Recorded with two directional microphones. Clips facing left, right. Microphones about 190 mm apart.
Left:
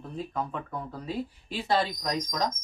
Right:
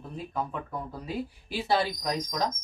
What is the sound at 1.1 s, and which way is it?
Speech, 10° right (ahead or behind).